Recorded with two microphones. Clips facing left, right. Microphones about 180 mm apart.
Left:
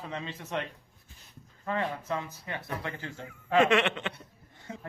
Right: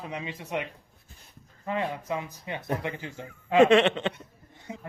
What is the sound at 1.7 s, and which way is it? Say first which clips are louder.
Speech: right 2 dB; 15° right (ahead or behind).